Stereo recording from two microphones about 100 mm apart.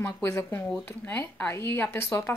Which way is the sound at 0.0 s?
25° left (ahead or behind).